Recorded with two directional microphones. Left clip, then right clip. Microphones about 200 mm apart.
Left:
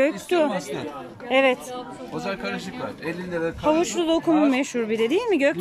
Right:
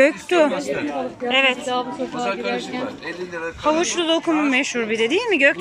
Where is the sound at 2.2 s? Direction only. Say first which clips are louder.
Right 5 dB; 50° left (ahead or behind).